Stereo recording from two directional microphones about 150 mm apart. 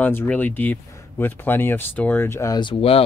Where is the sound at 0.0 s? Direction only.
10° left (ahead or behind).